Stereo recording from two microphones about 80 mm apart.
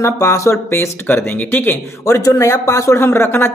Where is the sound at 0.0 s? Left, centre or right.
Left.